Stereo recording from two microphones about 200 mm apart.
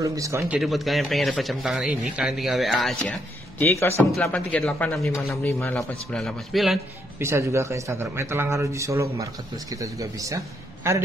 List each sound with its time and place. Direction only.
0.0 s a man's voice: 15° right (ahead or behind)
0.6 s speech: centre (ahead or behind)
7.2 s a man's voice: 15° right (ahead or behind)